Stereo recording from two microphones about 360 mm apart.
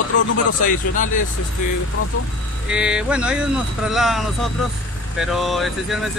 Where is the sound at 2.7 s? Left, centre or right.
Centre.